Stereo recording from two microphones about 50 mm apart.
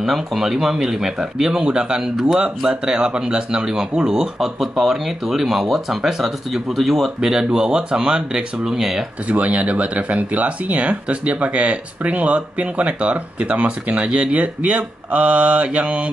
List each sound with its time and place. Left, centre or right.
0.0 s speech: centre
7.2 s speech: centre
9.5 s speech: right